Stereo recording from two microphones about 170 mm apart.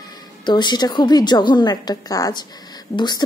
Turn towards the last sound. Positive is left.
turn(degrees=25)  # may be behind; listen again after turning